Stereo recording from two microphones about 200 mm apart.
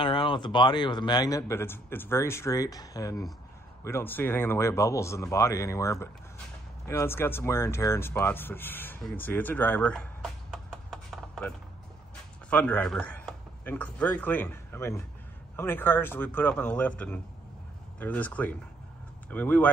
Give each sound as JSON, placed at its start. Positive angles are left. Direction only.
{"t": 0.0, "sound": "speech", "side_deg": 25}
{"t": 10.5, "sound": "a sound", "side_deg": 0}
{"t": 12.4, "sound": "speech", "side_deg": 5}